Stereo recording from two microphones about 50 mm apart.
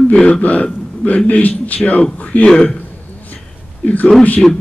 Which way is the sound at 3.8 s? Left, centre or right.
Left.